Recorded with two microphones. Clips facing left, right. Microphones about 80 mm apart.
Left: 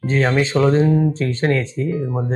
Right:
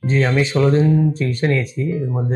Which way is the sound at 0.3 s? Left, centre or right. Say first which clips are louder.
Left 1 dB; left.